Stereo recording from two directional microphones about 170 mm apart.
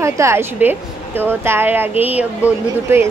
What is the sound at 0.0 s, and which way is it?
A woman's voice, 15° right (ahead or behind).